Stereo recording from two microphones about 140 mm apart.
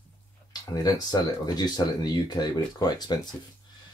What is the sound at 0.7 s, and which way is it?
Speech, 25° left (ahead or behind).